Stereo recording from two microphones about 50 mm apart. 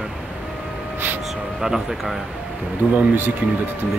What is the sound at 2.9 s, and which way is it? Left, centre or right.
Speech, right.